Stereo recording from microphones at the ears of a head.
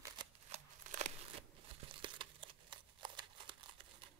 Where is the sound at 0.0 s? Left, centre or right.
Right.